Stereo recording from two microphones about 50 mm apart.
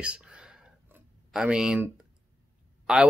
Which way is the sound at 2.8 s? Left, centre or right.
Centre.